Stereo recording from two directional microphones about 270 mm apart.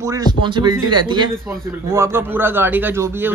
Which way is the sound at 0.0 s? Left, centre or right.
Centre.